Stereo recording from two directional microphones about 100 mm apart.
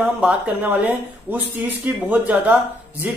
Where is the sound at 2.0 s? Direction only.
15° right (ahead or behind).